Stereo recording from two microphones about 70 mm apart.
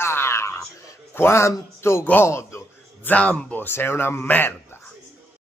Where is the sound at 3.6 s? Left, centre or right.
Left.